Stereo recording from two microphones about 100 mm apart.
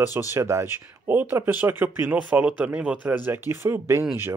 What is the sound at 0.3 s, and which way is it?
Speech, 30° right (ahead or behind).